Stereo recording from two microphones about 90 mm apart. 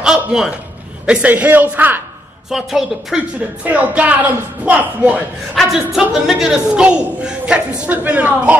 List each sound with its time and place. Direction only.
0.0 s a sound: 5° right (ahead or behind)
1.0 s a woman's voice: 15° right (ahead or behind)
2.5 s a woman's voice: 5° right (ahead or behind)
3.6 s a woman's voice: 15° right (ahead or behind)
5.5 s a woman's voice: centre (ahead or behind); by 8.5 s 20° right (ahead or behind)